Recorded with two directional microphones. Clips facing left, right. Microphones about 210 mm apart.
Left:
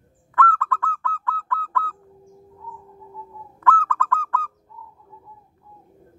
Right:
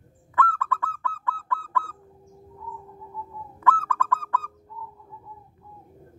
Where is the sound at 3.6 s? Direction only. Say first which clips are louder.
Left 2 dB; 15° right (ahead or behind).